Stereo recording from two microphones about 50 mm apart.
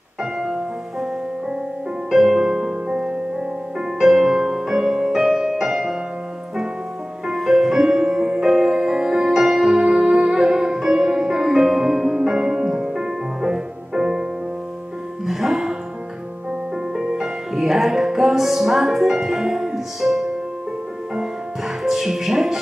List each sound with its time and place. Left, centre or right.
0.2 s music: centre
2.0 s music: centre
7.2 s music: centre
15.2 s music: centre
16.9 s music: centre